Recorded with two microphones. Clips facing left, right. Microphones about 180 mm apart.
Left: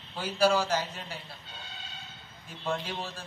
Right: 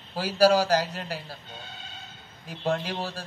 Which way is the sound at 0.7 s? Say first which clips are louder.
Right 6 dB; 90° right.